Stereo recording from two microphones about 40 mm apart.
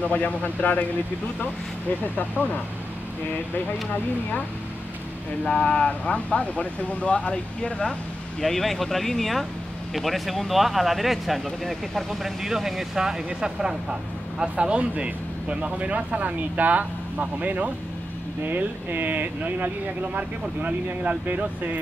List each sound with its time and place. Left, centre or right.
0.0 s speech: left
2.1 s speech: left
5.4 s speech: left
8.4 s speech: centre; by 21.7 s right